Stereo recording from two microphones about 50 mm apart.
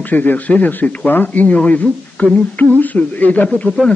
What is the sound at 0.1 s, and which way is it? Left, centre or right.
A man's voice, left.